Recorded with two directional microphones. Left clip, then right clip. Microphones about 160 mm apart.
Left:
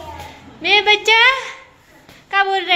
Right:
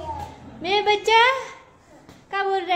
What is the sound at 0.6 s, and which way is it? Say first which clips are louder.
A woman's voice: left 7 dB; 15° right (ahead or behind).